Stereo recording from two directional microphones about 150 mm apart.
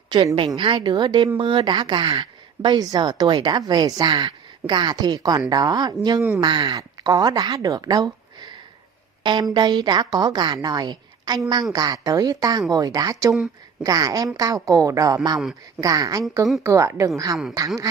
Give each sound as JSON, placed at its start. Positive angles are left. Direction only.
{"t": 0.1, "sound": "a woman's voice", "side_deg": -30}